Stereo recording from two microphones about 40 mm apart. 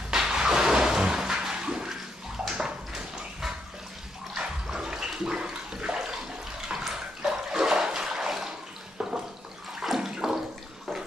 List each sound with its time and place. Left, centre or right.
0.1 s a sound: centre
1.5 s a sound: right
2.5 s dog: centre
4.7 s toilet flush: centre
6.7 s bathtub: centre
7.2 s toilet flush: centre
9.8 s bathtub: centre